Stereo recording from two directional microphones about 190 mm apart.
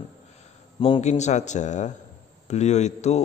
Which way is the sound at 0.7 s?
25° left (ahead or behind).